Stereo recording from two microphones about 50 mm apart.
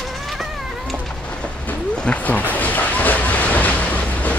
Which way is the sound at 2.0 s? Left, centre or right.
Left.